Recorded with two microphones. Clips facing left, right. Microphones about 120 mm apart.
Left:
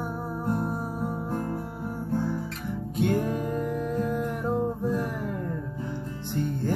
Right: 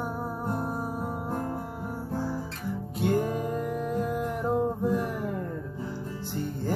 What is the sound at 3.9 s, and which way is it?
Music, 15° right (ahead or behind).